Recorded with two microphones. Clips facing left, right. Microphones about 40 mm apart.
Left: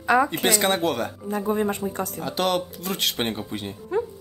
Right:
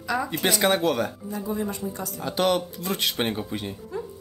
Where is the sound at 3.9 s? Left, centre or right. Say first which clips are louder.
Left 9 dB; left.